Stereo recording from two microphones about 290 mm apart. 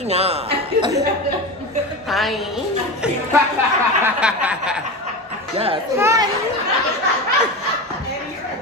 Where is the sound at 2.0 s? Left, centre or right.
Centre.